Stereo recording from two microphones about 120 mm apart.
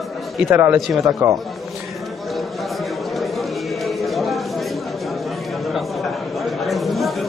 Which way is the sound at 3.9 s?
Centre (ahead or behind).